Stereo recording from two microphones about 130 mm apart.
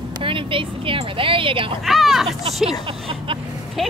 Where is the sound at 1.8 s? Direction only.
Centre (ahead or behind).